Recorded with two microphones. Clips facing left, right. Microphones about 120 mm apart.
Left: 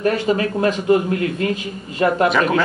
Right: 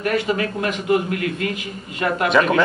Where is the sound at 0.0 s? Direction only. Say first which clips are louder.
Left 3 dB; 30° left (ahead or behind).